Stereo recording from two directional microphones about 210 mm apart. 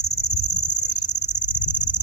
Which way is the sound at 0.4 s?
55° left (ahead or behind).